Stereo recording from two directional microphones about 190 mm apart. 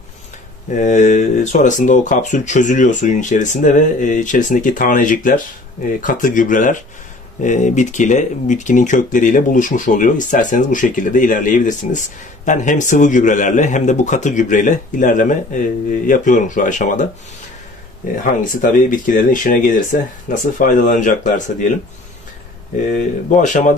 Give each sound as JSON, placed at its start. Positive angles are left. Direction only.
{"t": 0.7, "sound": "speech", "side_deg": 40}
{"t": 18.2, "sound": "speech", "side_deg": 45}
{"t": 22.9, "sound": "speech", "side_deg": 40}